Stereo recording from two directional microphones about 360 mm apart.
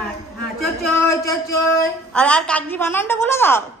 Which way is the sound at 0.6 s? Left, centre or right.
Centre.